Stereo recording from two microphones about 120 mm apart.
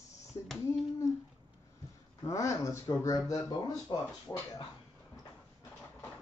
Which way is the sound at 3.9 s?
40° left (ahead or behind).